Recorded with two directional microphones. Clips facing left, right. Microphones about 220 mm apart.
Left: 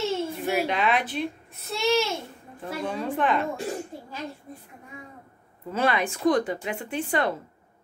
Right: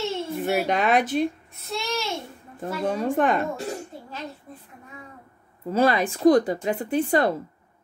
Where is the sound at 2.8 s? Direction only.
45° right (ahead or behind).